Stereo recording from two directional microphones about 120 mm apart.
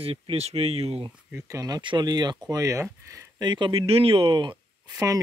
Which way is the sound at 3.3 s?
40° right (ahead or behind).